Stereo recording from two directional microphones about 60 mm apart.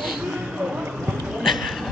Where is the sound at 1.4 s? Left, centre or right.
Centre.